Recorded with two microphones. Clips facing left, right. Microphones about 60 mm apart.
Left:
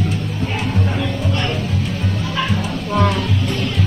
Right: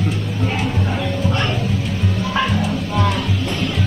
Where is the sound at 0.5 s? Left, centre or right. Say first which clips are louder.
Left 2 dB; centre.